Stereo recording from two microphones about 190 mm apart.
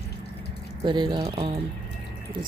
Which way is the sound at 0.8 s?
25° right (ahead or behind).